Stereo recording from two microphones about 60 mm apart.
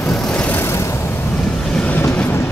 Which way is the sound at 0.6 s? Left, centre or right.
Left.